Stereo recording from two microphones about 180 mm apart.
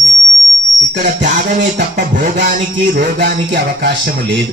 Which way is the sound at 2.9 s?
65° right (ahead or behind).